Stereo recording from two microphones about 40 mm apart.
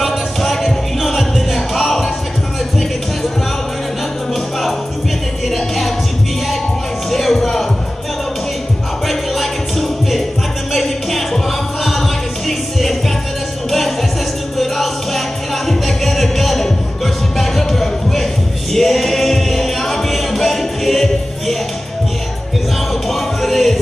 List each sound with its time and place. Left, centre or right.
0.0 s music: centre
5.5 s music: centre
7.1 s music: centre
9.0 s music: centre
23.0 s music: centre